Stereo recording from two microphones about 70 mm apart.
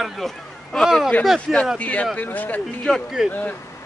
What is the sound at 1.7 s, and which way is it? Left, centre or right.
Speech, left.